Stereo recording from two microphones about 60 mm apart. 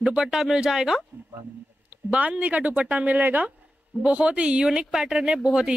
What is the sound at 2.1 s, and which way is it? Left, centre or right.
Speech, right.